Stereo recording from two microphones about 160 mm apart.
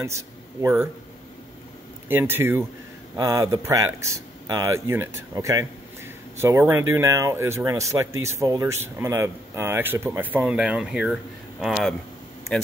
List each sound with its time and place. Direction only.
2.0 s speech: 15° right (ahead or behind)